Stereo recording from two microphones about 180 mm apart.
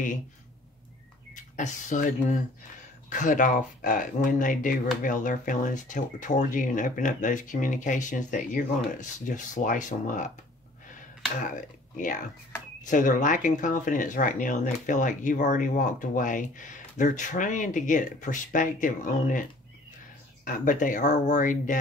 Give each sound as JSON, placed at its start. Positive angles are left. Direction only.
{"t": 1.3, "sound": "speech", "side_deg": 45}
{"t": 11.4, "sound": "speech", "side_deg": 45}
{"t": 20.4, "sound": "speech", "side_deg": 45}